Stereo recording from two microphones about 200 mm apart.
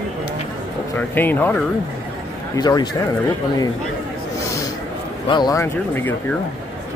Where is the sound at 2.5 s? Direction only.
20° left (ahead or behind).